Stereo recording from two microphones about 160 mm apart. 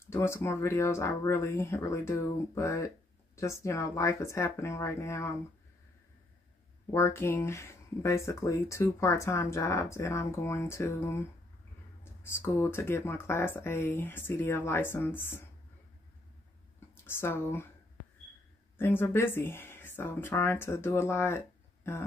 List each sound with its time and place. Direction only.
0.0 s speech: 15° left (ahead or behind)
6.9 s speech: 15° left (ahead or behind)
16.9 s speech: 15° left (ahead or behind)
18.8 s speech: 15° left (ahead or behind)